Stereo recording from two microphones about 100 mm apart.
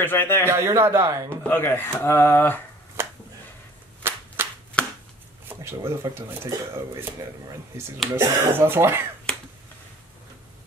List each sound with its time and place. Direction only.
0.0 s speech: 20° left (ahead or behind)
0.5 s speech: 25° right (ahead or behind)
1.4 s speech: 20° left (ahead or behind)
3.0 s a sound: 25° right (ahead or behind)
4.4 s a sound: 25° right (ahead or behind)
4.8 s chopping: 15° left (ahead or behind)
5.5 s speech: 25° right (ahead or behind)
8.1 s speech: 20° right (ahead or behind)